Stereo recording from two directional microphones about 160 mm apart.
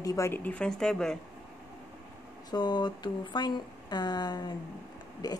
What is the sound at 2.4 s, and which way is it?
Speech, 30° left (ahead or behind).